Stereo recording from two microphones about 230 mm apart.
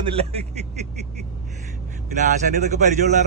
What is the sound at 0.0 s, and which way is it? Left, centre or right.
Speech, right.